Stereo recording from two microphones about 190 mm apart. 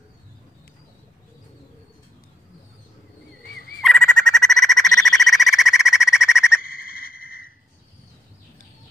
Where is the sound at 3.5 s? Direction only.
50° left (ahead or behind).